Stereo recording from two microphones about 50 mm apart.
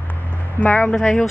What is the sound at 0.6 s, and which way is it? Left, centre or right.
Speech, left.